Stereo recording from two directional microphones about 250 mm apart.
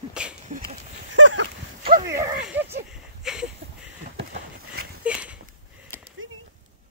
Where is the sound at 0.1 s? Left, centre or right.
Centre.